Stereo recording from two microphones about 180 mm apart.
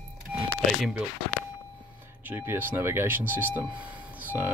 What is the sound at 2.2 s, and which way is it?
Speech, 10° right (ahead or behind).